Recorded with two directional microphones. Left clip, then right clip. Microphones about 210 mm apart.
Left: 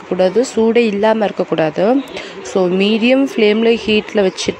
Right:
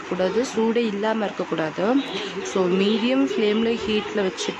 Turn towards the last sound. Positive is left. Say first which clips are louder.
# left 9 dB
turn(degrees=30)  # may be behind; listen again after turning